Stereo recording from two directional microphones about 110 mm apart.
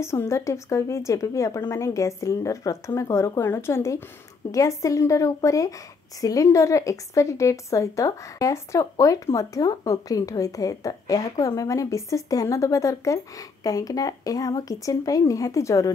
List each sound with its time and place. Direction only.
0.0 s speech: 25° left (ahead or behind)